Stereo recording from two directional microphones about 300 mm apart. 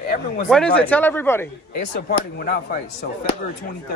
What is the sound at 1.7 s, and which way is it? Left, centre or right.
Speech, left.